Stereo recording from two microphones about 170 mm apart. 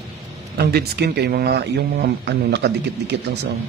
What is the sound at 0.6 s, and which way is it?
Speech, 70° right (ahead or behind).